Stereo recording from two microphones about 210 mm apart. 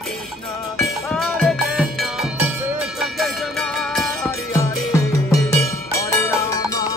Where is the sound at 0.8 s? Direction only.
Centre (ahead or behind).